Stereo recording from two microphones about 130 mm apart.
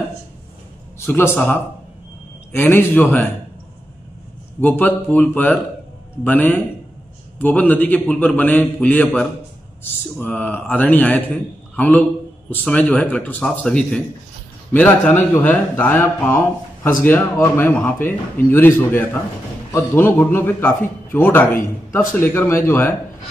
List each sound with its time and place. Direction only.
0.9 s a man's voice: 20° left (ahead or behind)
2.7 s a man's voice: 15° left (ahead or behind)
4.6 s a man's voice: 15° left (ahead or behind)